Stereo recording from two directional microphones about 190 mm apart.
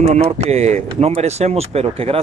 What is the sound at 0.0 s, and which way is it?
Speech, 35° right (ahead or behind).